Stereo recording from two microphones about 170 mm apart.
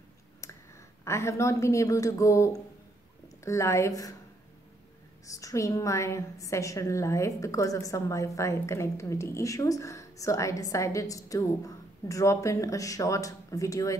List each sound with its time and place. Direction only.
1.0 s a woman's voice: 15° left (ahead or behind)
5.2 s a woman's voice: 20° left (ahead or behind)